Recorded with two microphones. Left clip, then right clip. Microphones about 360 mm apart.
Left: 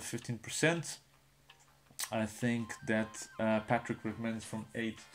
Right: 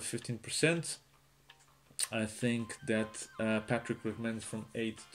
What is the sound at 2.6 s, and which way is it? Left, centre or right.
Speech, centre.